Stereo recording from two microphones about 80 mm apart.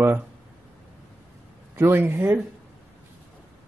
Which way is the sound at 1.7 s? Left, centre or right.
Right.